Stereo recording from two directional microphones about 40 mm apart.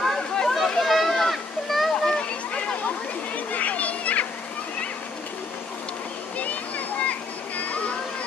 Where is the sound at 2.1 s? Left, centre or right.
Left.